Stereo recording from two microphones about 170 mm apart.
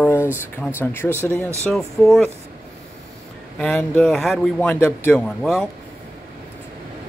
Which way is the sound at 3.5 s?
5° left (ahead or behind).